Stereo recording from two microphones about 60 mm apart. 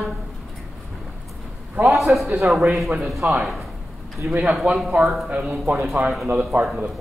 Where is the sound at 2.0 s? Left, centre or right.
Centre.